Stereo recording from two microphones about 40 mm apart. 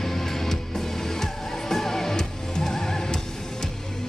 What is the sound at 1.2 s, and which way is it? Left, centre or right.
Music, centre.